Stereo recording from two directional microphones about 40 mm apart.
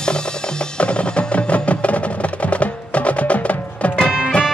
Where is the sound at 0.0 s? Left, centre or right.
Left.